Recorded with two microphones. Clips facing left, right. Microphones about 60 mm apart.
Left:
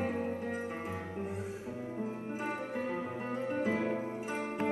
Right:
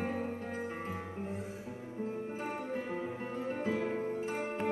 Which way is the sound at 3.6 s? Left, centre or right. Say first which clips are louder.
Left 1 dB; left.